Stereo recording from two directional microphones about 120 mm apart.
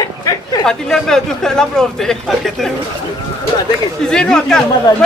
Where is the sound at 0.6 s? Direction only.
5° left (ahead or behind).